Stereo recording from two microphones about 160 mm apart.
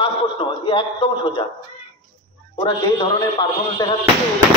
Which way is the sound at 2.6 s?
25° left (ahead or behind).